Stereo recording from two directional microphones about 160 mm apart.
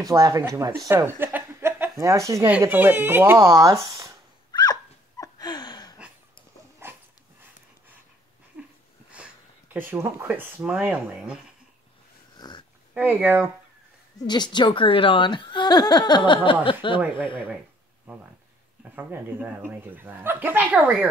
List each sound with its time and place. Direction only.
0.0 s speech: 20° right (ahead or behind)
4.5 s a sound: 25° left (ahead or behind)
6.8 s dog: 15° right (ahead or behind)
9.1 s speech: 10° right (ahead or behind)
12.4 s dog: 30° left (ahead or behind)
12.9 s speech: 10° right (ahead or behind)
14.2 s speech: 25° left (ahead or behind)
18.1 s speech: 10° right (ahead or behind)